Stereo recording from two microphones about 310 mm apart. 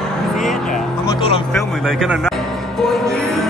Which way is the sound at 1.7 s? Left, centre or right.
Centre.